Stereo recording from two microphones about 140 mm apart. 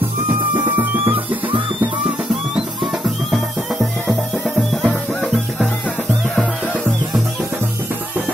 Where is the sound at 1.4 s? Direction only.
35° right (ahead or behind).